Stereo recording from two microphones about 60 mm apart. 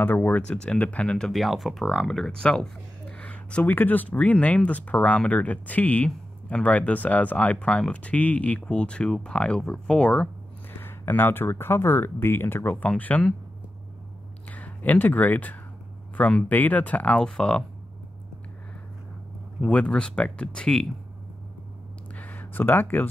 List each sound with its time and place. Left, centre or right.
0.0 s speech: left
0.5 s speech: centre
1.3 s speech: centre; by 3.7 s left
3.7 s speech: left
10.8 s speech: left
12.8 s speech: left
14.5 s speech: left
19.6 s speech: centre
22.1 s a sound: left